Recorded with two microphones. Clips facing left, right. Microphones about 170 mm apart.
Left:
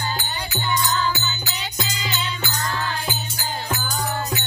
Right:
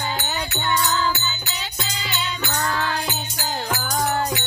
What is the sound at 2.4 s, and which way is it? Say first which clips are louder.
Music: right 5 dB; 70° right (ahead or behind).